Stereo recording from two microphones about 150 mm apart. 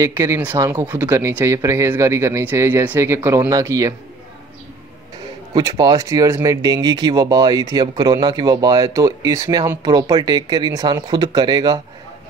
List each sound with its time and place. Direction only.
0.0 s speech: 20° right (ahead or behind)
5.5 s speech: 25° right (ahead or behind)